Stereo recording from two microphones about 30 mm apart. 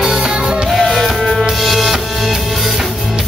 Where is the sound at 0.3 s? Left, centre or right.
Centre.